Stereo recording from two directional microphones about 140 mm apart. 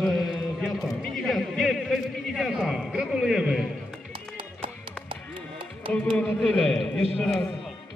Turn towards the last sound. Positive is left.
turn(degrees=5)  # may be behind; listen again after turning